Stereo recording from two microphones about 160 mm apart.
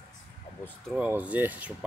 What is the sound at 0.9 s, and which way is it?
Speech, 10° right (ahead or behind).